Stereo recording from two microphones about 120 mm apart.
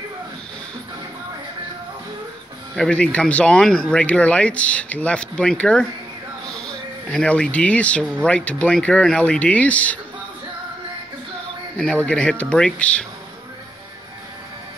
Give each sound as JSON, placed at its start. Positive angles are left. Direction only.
{"t": 2.7, "sound": "speech", "side_deg": 10}
{"t": 11.7, "sound": "speech", "side_deg": 10}